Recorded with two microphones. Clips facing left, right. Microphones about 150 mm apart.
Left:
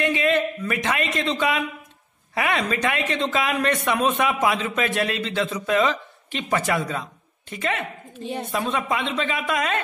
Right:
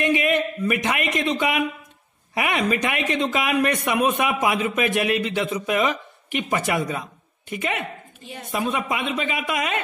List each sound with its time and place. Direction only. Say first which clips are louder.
0.0 s a man's voice: even; 15° right (ahead or behind)
8.9 s a man's voice: left 1 dB; 10° right (ahead or behind)